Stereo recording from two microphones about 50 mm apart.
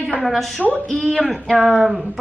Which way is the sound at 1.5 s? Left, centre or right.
Right.